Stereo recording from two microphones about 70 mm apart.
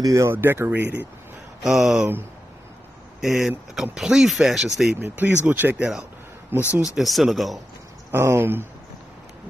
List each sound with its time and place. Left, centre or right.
0.0 s speech: right
0.3 s speech: right
1.6 s speech: centre
3.2 s speech: centre
5.1 s speech: right
7.0 s speech: centre
8.1 s speech: right